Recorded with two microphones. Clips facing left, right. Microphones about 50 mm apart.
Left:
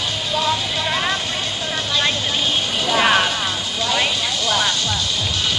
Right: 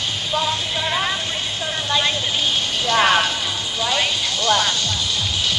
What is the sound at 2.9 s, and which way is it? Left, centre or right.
Music, centre.